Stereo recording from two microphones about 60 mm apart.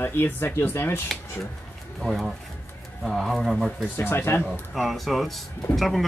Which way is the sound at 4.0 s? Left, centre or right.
Left.